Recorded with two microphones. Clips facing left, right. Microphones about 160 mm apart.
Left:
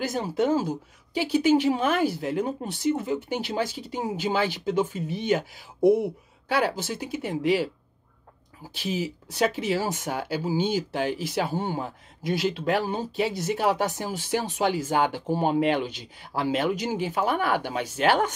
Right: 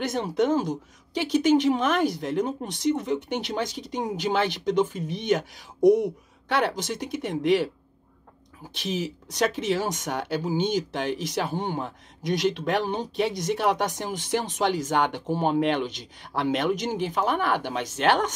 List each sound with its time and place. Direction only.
0.1 s speech: 5° left (ahead or behind)
8.8 s speech: 10° left (ahead or behind)